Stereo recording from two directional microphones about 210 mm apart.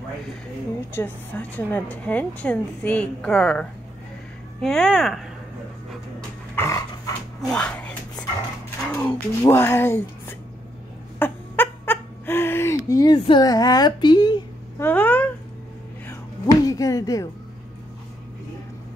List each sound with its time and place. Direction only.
0.9 s a woman's voice: 10° left (ahead or behind)
6.5 s dog: 15° left (ahead or behind)
8.9 s a woman's voice: 10° left (ahead or behind)
11.1 s a sound: 10° left (ahead or behind)
14.9 s a woman's voice: 10° left (ahead or behind)
16.1 s music: 15° left (ahead or behind)